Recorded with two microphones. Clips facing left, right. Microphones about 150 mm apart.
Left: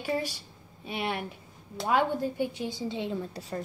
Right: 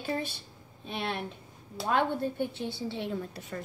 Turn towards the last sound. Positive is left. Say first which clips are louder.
# left 3 dB
turn(degrees=35)  # may be behind; listen again after turning